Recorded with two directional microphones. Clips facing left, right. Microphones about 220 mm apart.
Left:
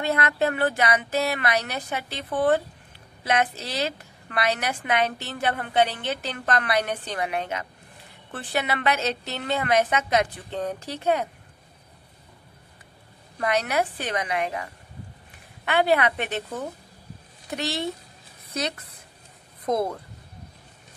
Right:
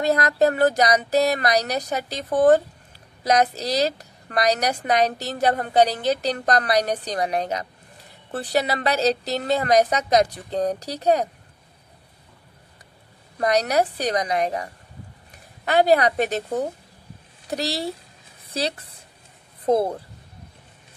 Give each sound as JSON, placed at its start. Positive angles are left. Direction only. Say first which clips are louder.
{"t": 0.0, "sound": "a woman's voice", "louder": "right 5 dB", "side_deg": -40}
{"t": 13.4, "sound": "a woman's voice", "louder": "right 4 dB", "side_deg": -40}